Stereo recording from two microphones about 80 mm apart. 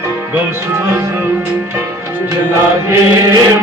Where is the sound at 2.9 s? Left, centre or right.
Right.